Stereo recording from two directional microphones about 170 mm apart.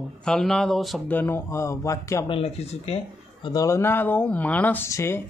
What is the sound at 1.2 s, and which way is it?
Speech, 15° left (ahead or behind).